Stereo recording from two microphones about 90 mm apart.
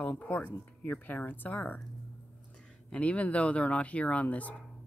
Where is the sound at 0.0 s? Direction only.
20° left (ahead or behind).